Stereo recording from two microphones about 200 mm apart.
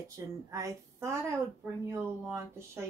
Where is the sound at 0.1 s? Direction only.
15° right (ahead or behind).